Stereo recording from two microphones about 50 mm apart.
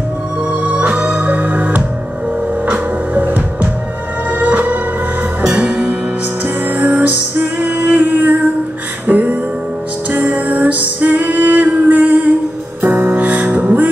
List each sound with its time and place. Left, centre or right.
0.5 s music: right
0.8 s music: right
3.2 s music: right
5.4 s music: centre
6.4 s music: right